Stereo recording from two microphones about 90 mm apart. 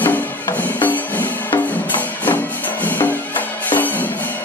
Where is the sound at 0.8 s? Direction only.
20° left (ahead or behind).